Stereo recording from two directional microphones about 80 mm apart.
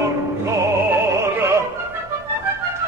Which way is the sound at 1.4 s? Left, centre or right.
Right.